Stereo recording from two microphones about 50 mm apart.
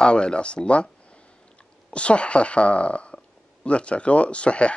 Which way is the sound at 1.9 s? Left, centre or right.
Left.